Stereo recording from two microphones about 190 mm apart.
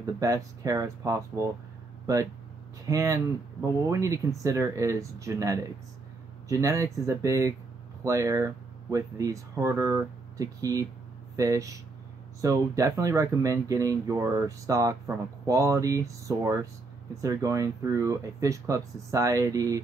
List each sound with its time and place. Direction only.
0.0 s speech: 15° right (ahead or behind)